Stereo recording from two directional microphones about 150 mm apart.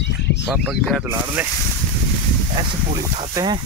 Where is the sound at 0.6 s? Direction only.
5° left (ahead or behind).